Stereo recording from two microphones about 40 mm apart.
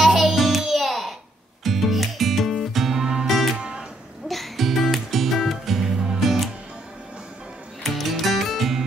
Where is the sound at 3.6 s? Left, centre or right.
Right.